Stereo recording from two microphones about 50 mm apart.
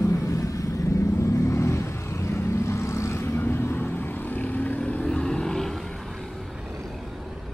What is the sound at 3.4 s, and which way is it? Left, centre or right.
Vehicle, left.